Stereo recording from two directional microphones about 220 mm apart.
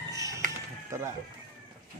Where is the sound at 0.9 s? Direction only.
15° right (ahead or behind).